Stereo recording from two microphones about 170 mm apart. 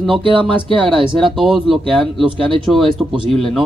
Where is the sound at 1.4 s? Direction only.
Centre (ahead or behind).